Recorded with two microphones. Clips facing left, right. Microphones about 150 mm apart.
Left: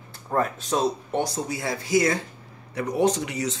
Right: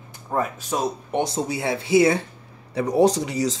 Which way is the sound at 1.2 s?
25° right (ahead or behind).